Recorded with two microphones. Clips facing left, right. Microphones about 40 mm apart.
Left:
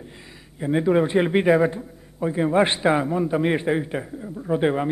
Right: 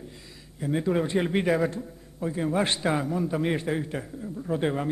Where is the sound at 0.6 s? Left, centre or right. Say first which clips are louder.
Left 6 dB; left.